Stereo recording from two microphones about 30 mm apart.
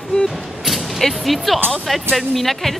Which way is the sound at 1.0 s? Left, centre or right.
Centre.